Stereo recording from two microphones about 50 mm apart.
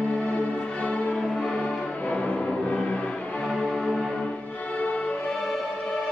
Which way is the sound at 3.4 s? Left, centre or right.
Centre.